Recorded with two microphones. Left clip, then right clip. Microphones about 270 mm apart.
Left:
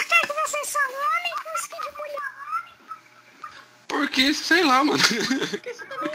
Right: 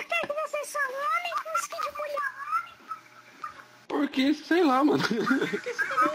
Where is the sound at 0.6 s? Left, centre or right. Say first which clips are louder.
Left 5 dB; centre.